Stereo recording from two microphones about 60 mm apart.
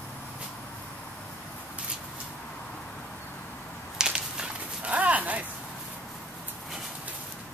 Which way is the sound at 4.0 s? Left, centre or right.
Centre.